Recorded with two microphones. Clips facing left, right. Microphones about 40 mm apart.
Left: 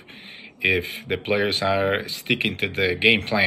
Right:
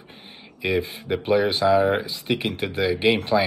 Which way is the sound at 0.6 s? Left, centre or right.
Left.